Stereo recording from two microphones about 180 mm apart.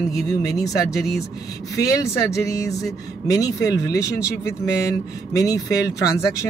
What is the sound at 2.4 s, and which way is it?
Speech, 15° left (ahead or behind).